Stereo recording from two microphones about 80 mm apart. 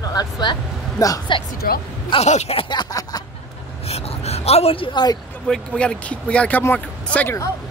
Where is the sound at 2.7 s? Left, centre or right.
Left.